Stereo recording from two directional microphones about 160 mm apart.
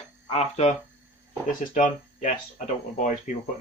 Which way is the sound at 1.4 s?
55° left (ahead or behind).